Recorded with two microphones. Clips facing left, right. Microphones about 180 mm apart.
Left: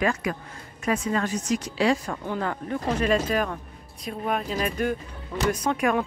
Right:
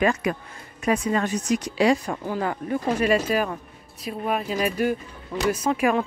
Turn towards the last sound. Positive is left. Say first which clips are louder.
# right 2 dB
turn(degrees=-5)  # may be behind; listen again after turning